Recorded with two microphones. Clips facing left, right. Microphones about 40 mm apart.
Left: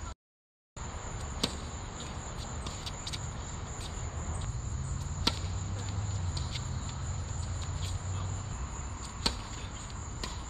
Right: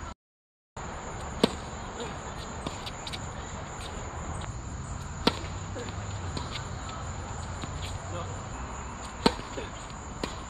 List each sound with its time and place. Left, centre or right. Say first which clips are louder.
1.4 s basketball bounce: right 10 dB; right
5.3 s basketball bounce: right 7 dB; centre
9.2 s chop: right 10 dB; right